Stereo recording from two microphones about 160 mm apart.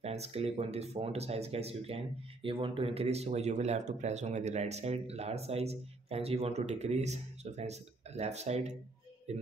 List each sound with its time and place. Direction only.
0.0 s speech: 40° right (ahead or behind)